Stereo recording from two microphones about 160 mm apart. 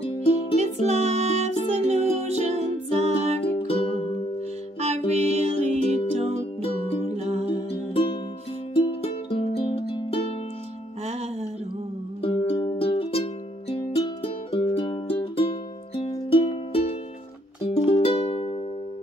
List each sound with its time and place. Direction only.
0.0 s music: 35° left (ahead or behind)
0.6 s music: 45° right (ahead or behind)
4.7 s music: 40° right (ahead or behind)
7.9 s music: 30° left (ahead or behind)
12.2 s music: 35° left (ahead or behind)
17.6 s music: 35° left (ahead or behind)